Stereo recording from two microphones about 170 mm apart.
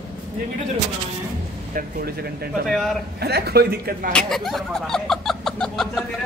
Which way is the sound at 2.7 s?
Centre (ahead or behind).